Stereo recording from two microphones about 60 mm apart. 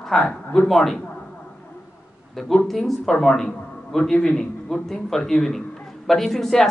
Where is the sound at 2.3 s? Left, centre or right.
Centre.